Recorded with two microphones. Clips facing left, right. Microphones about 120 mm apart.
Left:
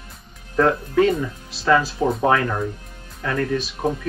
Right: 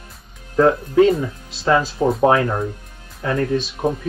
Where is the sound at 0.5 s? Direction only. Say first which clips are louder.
Right 3 dB; 25° right (ahead or behind).